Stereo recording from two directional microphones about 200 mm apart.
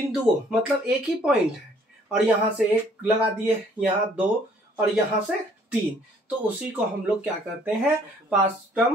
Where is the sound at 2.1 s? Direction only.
5° right (ahead or behind).